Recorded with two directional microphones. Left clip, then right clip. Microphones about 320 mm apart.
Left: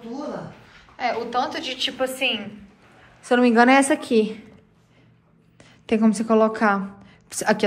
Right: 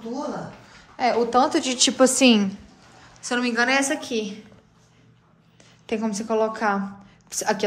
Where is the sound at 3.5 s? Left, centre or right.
Centre.